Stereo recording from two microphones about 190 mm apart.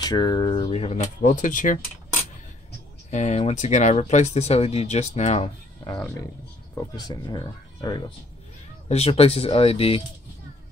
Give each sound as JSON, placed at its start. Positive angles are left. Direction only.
{"t": 0.0, "sound": "speech", "side_deg": 20}
{"t": 3.1, "sound": "speech", "side_deg": 35}
{"t": 6.7, "sound": "speech", "side_deg": 15}
{"t": 8.8, "sound": "speech", "side_deg": 30}